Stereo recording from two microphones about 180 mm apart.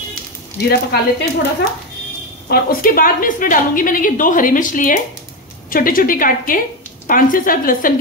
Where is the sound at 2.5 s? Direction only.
55° left (ahead or behind).